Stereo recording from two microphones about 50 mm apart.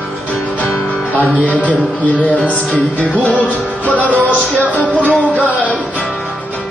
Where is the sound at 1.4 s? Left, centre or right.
Left.